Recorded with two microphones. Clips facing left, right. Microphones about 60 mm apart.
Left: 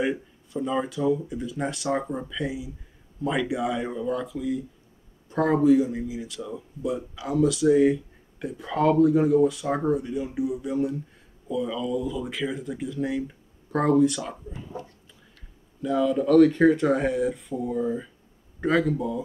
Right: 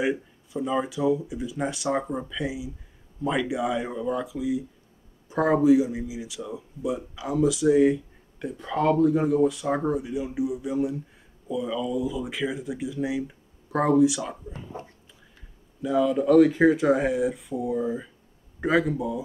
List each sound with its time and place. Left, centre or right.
0.0 s speech: centre
15.8 s speech: centre